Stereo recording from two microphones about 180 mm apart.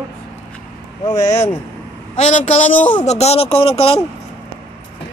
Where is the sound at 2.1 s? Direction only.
40° left (ahead or behind).